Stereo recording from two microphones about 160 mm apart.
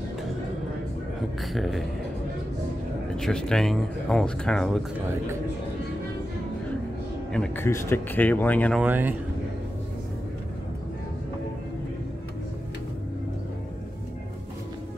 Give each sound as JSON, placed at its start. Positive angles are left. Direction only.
{"t": 1.4, "sound": "speech", "side_deg": 0}
{"t": 3.2, "sound": "speech", "side_deg": 5}
{"t": 7.3, "sound": "speech", "side_deg": 5}
{"t": 7.6, "sound": "speech", "side_deg": 15}
{"t": 8.8, "sound": "speech", "side_deg": -10}